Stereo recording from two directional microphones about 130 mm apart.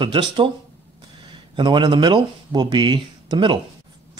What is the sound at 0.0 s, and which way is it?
Speech, 40° right (ahead or behind).